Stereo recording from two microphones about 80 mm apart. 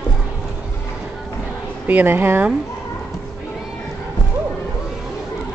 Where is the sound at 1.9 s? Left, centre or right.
Right.